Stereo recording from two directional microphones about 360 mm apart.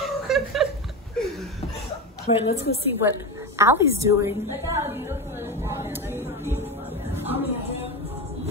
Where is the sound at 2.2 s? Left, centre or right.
Centre.